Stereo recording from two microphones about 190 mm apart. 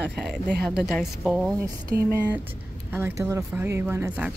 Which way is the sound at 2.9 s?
10° right (ahead or behind).